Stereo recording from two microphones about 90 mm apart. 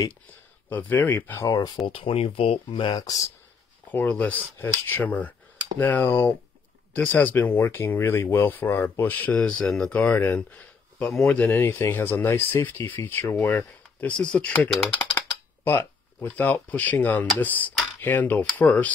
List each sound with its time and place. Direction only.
0.7 s speech: 20° left (ahead or behind)
1.9 s speech: 85° left
2.9 s speech: 50° left (ahead or behind)
3.9 s speech: 20° left (ahead or behind)